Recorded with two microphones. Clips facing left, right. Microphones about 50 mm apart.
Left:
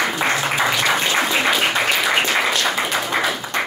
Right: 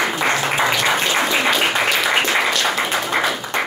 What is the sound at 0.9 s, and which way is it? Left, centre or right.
Applause, centre.